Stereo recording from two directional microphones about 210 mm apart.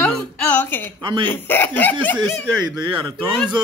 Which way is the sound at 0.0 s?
5° left (ahead or behind).